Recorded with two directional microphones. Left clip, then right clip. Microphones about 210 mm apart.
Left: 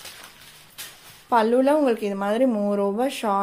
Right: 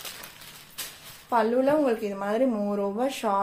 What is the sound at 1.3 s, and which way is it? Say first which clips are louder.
Speech: left 4 dB; 50° left (ahead or behind).